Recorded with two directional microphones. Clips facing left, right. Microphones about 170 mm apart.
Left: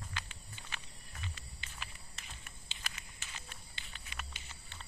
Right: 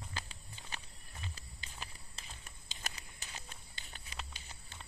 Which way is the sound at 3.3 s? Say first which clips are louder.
Even; 40° right (ahead or behind).